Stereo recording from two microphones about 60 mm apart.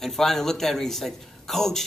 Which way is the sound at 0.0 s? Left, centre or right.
Centre.